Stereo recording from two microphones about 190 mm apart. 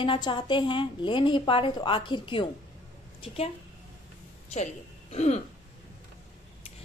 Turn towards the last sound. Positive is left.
turn(degrees=35)  # may be behind; listen again after turning